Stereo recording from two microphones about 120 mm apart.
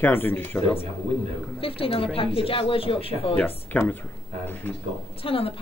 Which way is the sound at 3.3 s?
15° left (ahead or behind).